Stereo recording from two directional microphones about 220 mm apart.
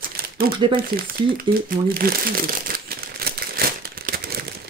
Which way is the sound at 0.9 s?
45° right (ahead or behind).